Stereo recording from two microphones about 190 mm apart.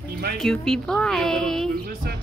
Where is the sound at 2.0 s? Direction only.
60° right (ahead or behind).